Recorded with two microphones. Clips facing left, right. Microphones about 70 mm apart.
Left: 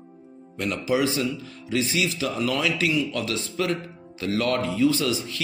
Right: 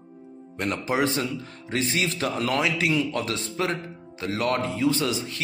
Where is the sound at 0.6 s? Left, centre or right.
Right.